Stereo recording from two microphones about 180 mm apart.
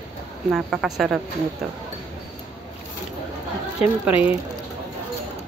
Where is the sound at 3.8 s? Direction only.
35° left (ahead or behind).